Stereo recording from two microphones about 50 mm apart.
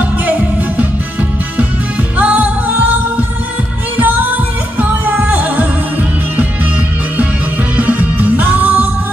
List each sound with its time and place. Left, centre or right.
0.2 s music: right
2.1 s music: right
7.7 s music: right